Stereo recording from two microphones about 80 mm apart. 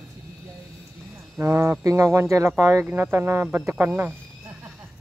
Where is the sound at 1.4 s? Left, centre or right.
Right.